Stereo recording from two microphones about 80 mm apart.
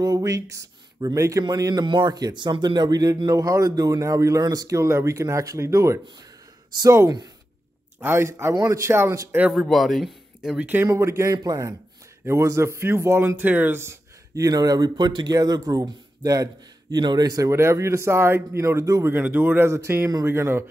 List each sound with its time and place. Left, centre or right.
0.0 s speech: right
1.4 s speech: right
8.0 s speech: right
9.5 s a man's voice: centre
10.5 s speech: centre
10.9 s speech: right
11.4 s speech: right
12.3 s speech: right
14.3 s speech: right
15.3 s speech: right
17.5 s speech: right
19.0 s speech: right